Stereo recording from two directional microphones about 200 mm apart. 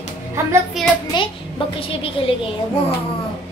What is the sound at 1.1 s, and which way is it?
Speech, 25° left (ahead or behind).